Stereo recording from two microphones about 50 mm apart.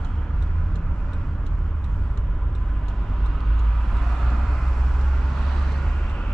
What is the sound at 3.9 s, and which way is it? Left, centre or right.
Vehicle, centre.